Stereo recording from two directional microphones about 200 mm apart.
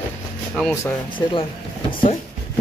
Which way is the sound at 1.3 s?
25° left (ahead or behind).